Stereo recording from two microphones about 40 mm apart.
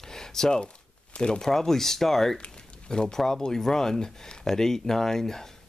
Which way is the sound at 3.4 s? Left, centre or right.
Centre.